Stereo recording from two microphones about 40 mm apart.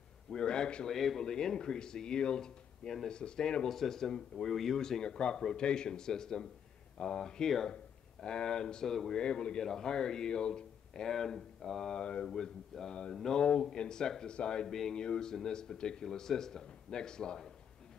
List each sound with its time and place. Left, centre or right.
0.3 s a man's voice: left
0.8 s speech: centre
3.6 s speech: centre
9.2 s speech: left
9.6 s speech: centre
12.3 s speech: centre